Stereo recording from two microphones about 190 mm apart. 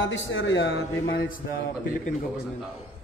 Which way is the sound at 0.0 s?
80° left.